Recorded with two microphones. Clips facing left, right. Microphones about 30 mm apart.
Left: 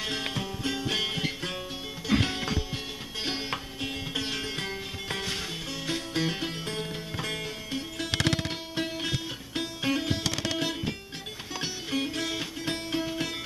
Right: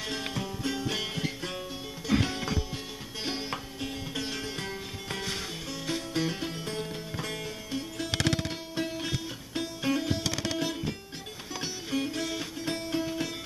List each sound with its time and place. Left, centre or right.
0.0 s music: left
10.2 s music: centre
10.5 s music: left